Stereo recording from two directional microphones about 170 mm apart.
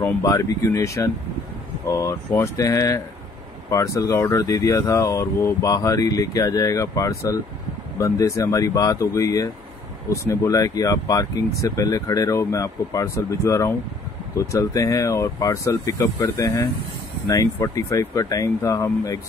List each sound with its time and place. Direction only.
0.2 s speech: 20° left (ahead or behind)